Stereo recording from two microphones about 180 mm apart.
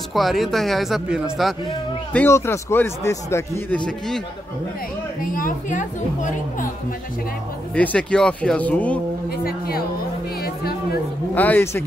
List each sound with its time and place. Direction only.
0.1 s speech: centre (ahead or behind)
2.1 s speech: 15° left (ahead or behind)
5.2 s a woman's voice: 50° left (ahead or behind)
7.7 s speech: 5° left (ahead or behind)
9.4 s a woman's voice: 55° left (ahead or behind)
11.3 s speech: 10° left (ahead or behind)